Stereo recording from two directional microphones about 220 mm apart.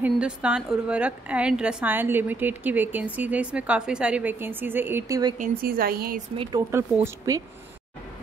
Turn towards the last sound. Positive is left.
turn(degrees=-15)  # may be behind; listen again after turning